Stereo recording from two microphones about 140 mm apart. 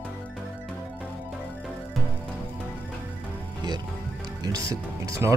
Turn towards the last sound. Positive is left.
turn(degrees=-20)  # may be behind; listen again after turning